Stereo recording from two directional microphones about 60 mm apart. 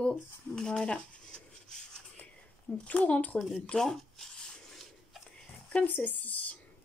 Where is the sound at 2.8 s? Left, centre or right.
Left.